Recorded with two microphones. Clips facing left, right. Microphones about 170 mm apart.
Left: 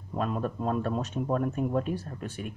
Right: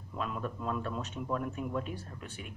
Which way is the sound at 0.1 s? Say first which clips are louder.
Left 7 dB; 45° left (ahead or behind).